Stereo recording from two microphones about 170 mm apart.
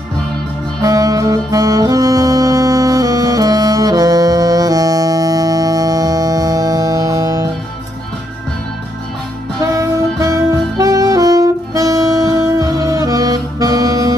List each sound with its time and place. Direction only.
0.8 s saxophone: 20° right (ahead or behind)
9.6 s saxophone: 20° right (ahead or behind)